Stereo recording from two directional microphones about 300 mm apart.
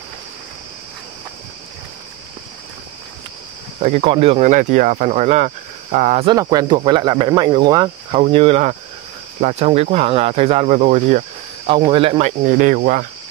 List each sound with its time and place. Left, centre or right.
3.8 s speech: centre